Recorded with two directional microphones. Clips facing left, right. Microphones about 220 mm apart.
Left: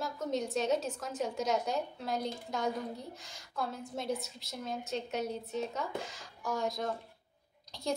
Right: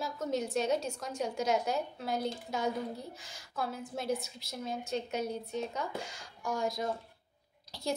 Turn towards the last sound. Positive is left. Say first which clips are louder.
# right 1 dB
turn(degrees=0)  # may be behind; listen again after turning